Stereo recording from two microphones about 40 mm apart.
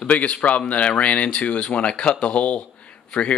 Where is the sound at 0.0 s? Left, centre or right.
Left.